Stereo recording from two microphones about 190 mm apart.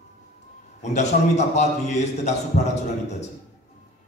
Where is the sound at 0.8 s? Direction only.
35° left (ahead or behind).